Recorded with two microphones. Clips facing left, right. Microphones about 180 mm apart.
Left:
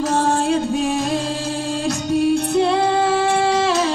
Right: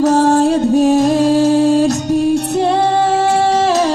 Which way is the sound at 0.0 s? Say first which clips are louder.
Right 8 dB; 40° right (ahead or behind).